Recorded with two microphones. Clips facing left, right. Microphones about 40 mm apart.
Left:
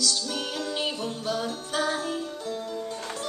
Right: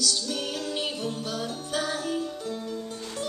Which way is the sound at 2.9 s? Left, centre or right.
Left.